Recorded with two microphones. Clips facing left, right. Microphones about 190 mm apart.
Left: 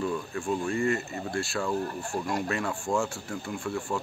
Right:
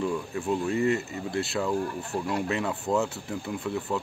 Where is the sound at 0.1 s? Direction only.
20° right (ahead or behind).